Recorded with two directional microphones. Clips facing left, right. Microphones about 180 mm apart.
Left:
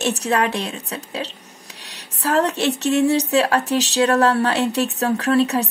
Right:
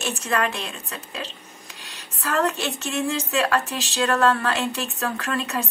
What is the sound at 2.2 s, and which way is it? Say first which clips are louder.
A woman's voice: left 5 dB; 35° left (ahead or behind).